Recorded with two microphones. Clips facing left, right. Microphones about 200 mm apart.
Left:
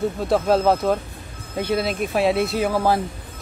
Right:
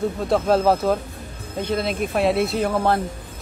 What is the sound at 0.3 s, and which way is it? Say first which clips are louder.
Speech: even; centre (ahead or behind).